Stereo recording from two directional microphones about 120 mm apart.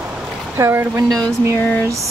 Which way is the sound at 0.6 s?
25° right (ahead or behind).